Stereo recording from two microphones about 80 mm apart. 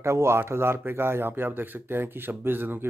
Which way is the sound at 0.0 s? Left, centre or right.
Right.